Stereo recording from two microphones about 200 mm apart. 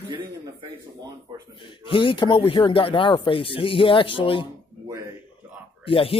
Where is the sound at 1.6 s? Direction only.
25° left (ahead or behind).